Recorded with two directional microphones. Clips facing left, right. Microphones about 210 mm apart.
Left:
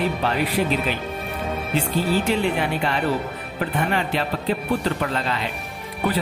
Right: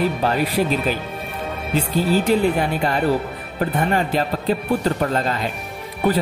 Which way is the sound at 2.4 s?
40° right (ahead or behind).